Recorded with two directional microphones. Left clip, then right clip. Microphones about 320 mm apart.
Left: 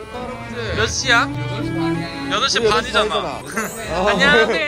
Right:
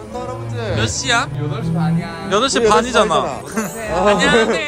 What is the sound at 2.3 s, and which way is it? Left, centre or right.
Speech, centre.